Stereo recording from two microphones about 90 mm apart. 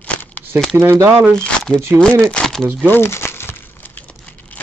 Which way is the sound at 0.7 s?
30° right (ahead or behind).